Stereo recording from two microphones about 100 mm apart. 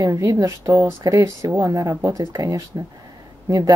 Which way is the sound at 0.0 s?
30° right (ahead or behind).